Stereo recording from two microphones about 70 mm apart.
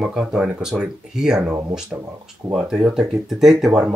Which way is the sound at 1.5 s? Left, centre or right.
Right.